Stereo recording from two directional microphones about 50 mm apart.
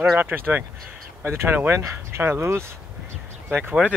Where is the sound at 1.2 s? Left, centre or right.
Right.